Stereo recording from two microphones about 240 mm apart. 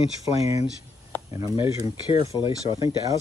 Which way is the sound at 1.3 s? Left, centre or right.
Centre.